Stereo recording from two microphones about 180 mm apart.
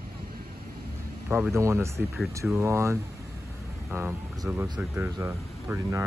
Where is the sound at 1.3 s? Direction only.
15° right (ahead or behind).